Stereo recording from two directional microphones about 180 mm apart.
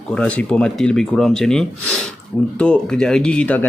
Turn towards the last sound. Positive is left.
turn(degrees=5)  # may be behind; listen again after turning